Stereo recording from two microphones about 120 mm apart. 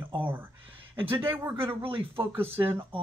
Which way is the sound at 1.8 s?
45° right (ahead or behind).